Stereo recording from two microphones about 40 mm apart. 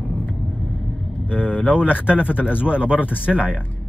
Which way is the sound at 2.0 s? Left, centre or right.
Right.